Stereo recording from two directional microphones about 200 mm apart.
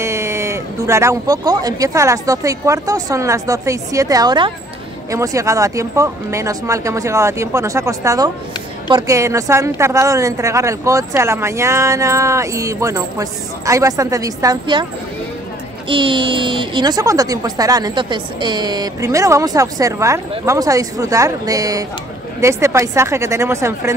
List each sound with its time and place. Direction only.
0.0 s a woman's voice: 15° right (ahead or behind)
15.9 s a woman's voice: 25° right (ahead or behind)